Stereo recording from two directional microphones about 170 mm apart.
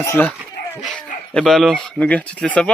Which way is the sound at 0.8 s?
Centre (ahead or behind).